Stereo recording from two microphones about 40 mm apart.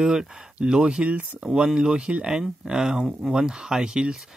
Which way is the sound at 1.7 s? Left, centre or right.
Right.